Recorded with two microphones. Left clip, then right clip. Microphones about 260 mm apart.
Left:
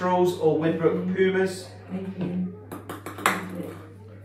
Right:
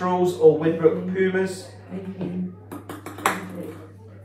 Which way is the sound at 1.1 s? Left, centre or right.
Centre.